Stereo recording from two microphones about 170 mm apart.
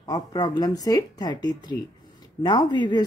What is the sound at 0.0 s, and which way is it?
A woman's voice, 20° left (ahead or behind).